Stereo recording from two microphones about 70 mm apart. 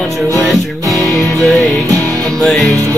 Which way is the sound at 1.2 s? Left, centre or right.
Centre.